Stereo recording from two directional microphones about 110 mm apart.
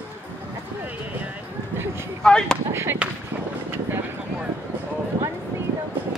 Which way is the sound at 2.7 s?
25° right (ahead or behind).